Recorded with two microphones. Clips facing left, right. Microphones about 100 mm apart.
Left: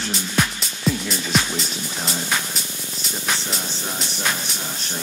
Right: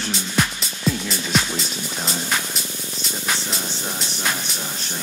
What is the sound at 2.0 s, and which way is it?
Speech, centre (ahead or behind).